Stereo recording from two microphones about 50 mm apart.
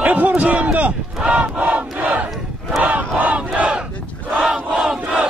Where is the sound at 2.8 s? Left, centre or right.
Right.